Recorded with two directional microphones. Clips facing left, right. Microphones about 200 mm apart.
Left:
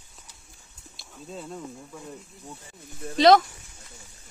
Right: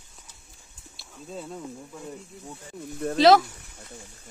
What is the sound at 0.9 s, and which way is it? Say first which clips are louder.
Speech: right 1 dB; centre (ahead or behind).